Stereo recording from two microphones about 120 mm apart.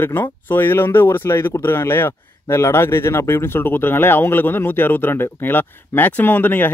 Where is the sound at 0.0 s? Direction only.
15° left (ahead or behind).